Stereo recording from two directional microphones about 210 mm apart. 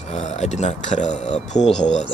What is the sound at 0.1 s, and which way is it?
Speech, 30° left (ahead or behind).